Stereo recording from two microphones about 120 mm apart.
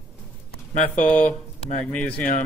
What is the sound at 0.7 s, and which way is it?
Speech, 90° left.